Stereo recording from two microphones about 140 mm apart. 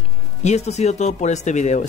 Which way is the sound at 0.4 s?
55° left (ahead or behind).